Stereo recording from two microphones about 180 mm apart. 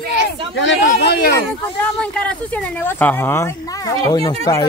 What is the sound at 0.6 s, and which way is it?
Speech, 75° left (ahead or behind).